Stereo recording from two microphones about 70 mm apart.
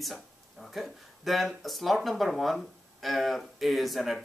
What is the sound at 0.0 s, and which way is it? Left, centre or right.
Speech, centre.